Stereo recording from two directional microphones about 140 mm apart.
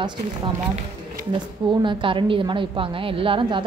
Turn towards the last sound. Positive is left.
turn(degrees=-35)  # may be behind; listen again after turning